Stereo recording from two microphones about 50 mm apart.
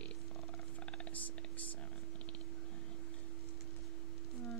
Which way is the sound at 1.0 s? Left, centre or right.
Left.